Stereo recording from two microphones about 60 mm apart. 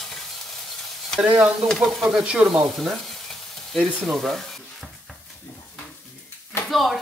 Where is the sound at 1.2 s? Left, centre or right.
Centre.